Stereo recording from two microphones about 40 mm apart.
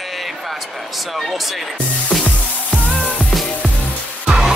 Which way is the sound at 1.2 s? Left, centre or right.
Centre.